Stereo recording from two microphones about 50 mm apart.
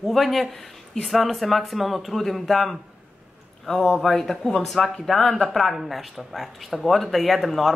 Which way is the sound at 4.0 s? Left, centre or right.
Centre.